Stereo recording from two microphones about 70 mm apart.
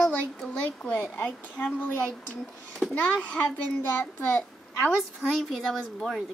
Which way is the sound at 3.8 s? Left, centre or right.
Left.